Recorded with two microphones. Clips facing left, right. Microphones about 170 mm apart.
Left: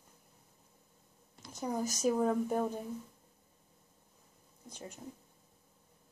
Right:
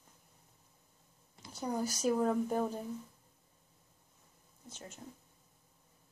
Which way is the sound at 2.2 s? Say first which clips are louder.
Left 1 dB; centre (ahead or behind).